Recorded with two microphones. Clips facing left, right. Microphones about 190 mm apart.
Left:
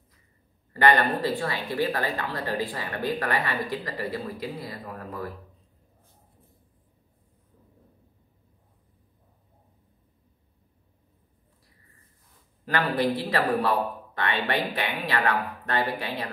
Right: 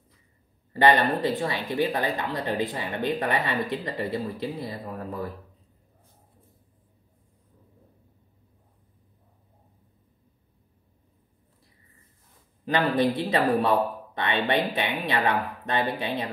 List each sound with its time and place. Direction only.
0.7 s speech: 20° right (ahead or behind)
12.6 s speech: 20° right (ahead or behind)